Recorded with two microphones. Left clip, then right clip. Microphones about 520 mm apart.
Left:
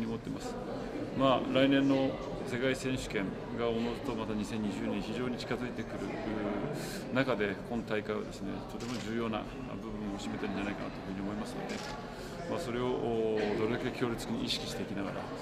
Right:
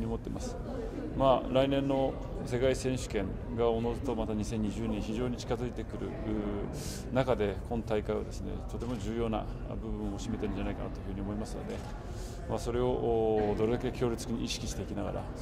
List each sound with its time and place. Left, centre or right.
1.2 s speech: right
7.2 s speech: right
12.5 s speech: right